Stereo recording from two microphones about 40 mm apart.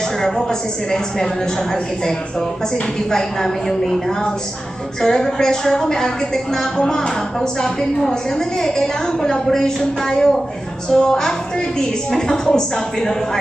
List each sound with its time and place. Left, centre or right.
0.2 s speech: centre
5.0 s speech: centre